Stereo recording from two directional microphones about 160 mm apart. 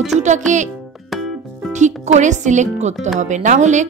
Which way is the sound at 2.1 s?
50° right (ahead or behind).